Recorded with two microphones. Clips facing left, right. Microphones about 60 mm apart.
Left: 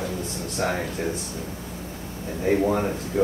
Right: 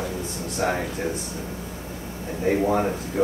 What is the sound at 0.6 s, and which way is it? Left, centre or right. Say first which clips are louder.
Speech: right 1 dB; centre.